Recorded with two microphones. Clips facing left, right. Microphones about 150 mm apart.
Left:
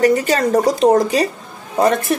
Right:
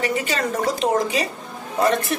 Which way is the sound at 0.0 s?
40° left (ahead or behind).